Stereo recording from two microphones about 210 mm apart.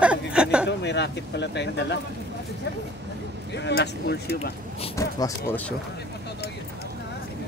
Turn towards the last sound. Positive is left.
turn(degrees=15)  # may be behind; listen again after turning